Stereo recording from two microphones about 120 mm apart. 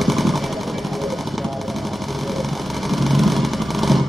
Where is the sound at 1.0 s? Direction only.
Centre (ahead or behind).